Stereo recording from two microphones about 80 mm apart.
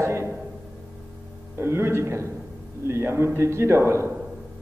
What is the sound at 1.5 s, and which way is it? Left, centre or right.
A man's voice, right.